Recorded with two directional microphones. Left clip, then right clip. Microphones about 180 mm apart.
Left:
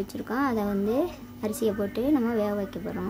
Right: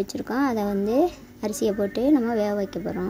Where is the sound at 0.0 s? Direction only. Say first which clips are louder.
Right 3 dB; 25° right (ahead or behind).